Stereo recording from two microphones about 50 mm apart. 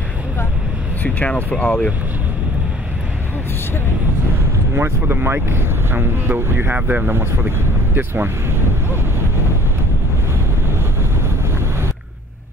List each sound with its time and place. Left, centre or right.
1.0 s speech: left
5.0 s speech: right
7.1 s speech: right